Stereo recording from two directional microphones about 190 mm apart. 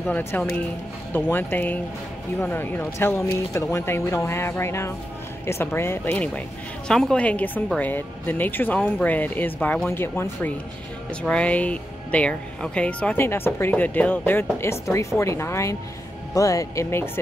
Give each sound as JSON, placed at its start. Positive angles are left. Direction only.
{"t": 0.0, "sound": "speech", "side_deg": 10}